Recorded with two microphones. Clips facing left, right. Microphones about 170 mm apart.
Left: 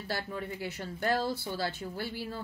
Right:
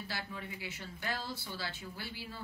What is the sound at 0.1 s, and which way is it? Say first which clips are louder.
Speech: left 11 dB; 45° left (ahead or behind).